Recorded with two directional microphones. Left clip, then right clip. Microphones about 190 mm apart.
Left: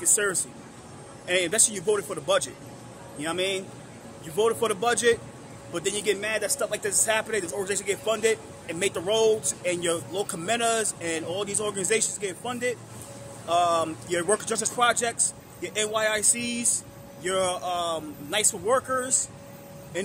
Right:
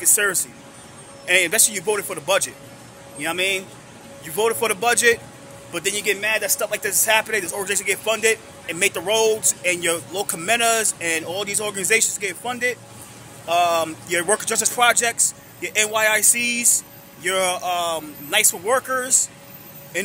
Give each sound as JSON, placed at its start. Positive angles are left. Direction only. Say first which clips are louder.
{"t": 0.0, "sound": "a man's voice", "louder": "right 5 dB", "side_deg": -10}